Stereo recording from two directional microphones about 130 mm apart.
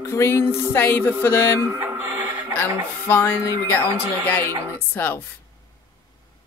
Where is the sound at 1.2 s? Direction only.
20° left (ahead or behind).